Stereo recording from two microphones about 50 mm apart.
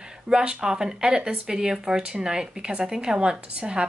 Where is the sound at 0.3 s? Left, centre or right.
Centre.